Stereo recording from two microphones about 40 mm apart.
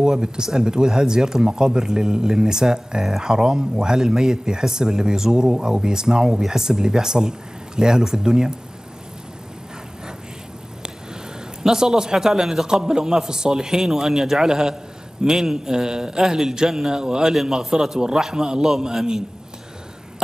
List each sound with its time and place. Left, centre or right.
0.0 s speech: centre
11.6 s speech: centre
17.3 s speech: centre